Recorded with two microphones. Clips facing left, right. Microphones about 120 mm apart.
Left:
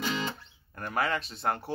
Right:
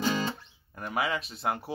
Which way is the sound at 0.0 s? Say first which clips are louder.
Right 3 dB; 35° right (ahead or behind).